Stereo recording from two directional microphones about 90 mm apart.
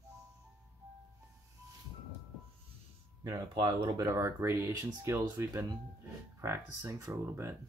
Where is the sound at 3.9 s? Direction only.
45° right (ahead or behind).